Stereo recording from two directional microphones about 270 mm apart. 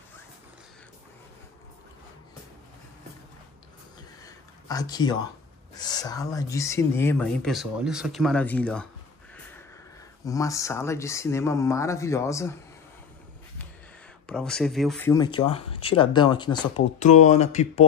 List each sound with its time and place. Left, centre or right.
4.2 s a sound: centre
5.8 s speech: centre
10.2 s speech: centre
14.2 s speech: centre; by 17.8 s left